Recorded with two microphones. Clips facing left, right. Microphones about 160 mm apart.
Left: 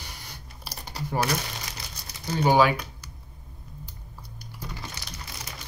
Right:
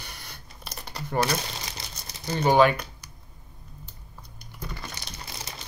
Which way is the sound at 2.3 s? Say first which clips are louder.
Right 1 dB; 5° left (ahead or behind).